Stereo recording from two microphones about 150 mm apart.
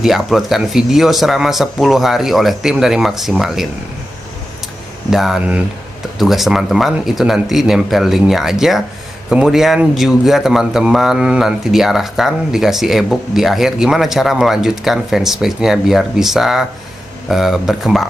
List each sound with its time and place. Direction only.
0.0 s speech: centre (ahead or behind)
5.1 s speech: centre (ahead or behind)